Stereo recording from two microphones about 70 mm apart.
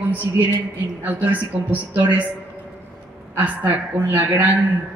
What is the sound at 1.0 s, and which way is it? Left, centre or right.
A woman's voice, right.